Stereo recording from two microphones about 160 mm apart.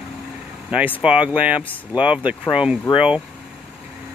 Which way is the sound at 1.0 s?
5° right (ahead or behind).